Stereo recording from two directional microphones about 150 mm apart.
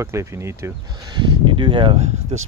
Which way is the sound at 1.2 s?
35° right (ahead or behind).